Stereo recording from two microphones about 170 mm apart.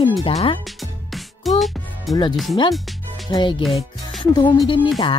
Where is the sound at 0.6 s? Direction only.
Centre (ahead or behind).